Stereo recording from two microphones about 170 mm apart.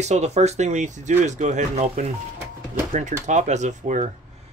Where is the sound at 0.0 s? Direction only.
40° right (ahead or behind).